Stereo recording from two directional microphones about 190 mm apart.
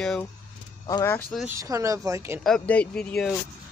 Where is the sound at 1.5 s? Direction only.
20° right (ahead or behind).